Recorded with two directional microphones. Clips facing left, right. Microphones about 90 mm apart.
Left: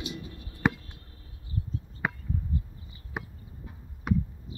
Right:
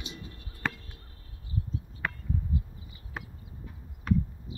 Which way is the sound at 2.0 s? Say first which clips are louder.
Left 3 dB; 15° left (ahead or behind).